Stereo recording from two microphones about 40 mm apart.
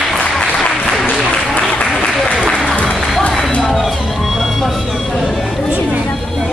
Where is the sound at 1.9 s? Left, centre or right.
Centre.